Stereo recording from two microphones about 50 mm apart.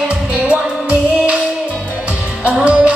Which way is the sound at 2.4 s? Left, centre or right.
Right.